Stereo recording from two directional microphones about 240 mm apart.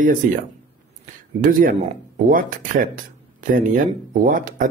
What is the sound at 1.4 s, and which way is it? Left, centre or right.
Speech, right.